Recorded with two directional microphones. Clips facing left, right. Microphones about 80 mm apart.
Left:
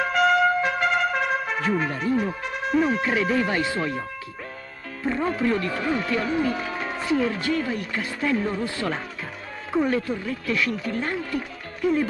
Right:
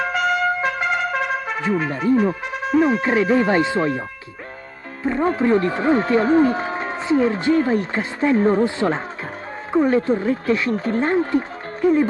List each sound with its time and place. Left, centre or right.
0.0 s trumpet: centre
2.6 s speech: centre
3.0 s speech: right
5.2 s speech: right
8.6 s speech: right